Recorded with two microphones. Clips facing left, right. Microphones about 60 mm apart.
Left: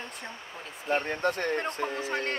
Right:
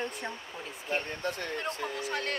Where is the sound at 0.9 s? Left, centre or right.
Left.